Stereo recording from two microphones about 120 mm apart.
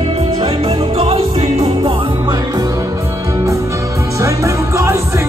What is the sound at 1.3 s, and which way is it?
Music, 55° right (ahead or behind).